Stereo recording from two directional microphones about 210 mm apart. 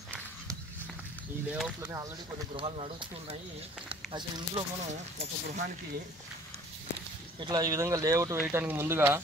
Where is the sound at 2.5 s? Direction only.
25° right (ahead or behind).